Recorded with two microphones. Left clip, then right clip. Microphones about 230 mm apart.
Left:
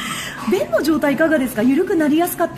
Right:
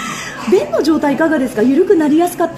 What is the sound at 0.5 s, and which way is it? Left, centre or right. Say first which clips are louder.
A woman's voice: right 5 dB; left.